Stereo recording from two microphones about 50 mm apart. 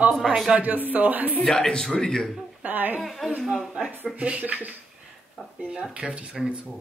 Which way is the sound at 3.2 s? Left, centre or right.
Centre.